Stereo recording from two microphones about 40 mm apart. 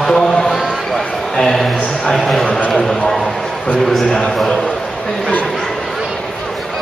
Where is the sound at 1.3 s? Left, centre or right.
Centre.